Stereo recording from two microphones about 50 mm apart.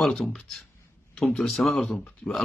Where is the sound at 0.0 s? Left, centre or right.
Centre.